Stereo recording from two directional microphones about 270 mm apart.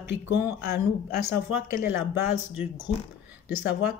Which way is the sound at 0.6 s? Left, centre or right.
Left.